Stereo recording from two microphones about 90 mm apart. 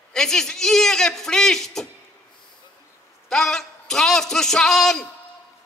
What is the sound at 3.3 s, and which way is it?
A man's voice, 5° left (ahead or behind).